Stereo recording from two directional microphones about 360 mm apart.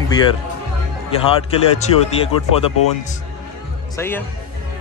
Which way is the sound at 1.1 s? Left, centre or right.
Centre.